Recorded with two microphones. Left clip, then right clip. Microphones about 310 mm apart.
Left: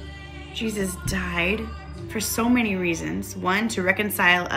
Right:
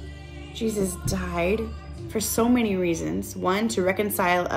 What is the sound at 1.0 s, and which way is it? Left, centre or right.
Speech, centre.